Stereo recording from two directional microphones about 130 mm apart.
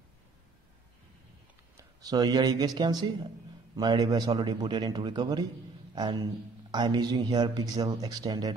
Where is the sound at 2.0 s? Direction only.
30° right (ahead or behind).